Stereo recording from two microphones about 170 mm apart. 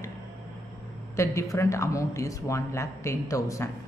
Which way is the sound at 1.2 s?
15° left (ahead or behind).